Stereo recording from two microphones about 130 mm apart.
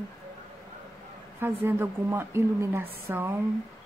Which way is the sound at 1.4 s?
15° right (ahead or behind).